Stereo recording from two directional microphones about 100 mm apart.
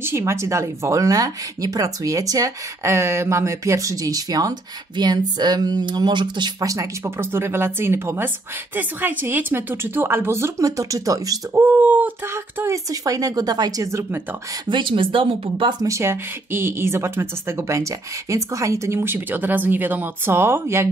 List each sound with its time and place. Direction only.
0.0 s a woman's voice: 25° right (ahead or behind); by 6.7 s 45° right (ahead or behind)
6.7 s speech: 30° right (ahead or behind)
11.6 s a sound: 15° right (ahead or behind)
12.5 s a woman's voice: 30° right (ahead or behind)
14.7 s speech: 55° right (ahead or behind)
15.8 s speech: 30° right (ahead or behind)